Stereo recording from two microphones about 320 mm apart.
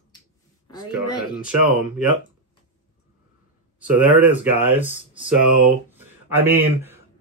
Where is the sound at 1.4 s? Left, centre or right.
Centre.